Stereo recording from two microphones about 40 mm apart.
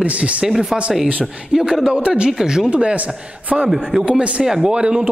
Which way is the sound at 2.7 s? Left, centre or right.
Right.